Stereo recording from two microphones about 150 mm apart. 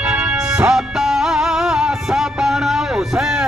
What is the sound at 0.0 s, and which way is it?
Music, 5° right (ahead or behind).